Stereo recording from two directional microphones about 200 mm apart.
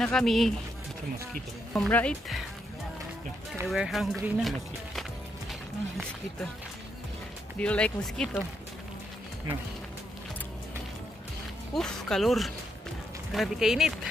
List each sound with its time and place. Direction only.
0.0 s speech: 5° left (ahead or behind)
1.7 s speech: 5° left (ahead or behind)
3.6 s speech: centre (ahead or behind)
7.5 s speech: 5° left (ahead or behind)
11.7 s speech: centre (ahead or behind)